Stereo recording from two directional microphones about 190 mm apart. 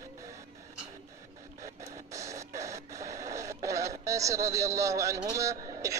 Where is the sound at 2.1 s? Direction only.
15° right (ahead or behind).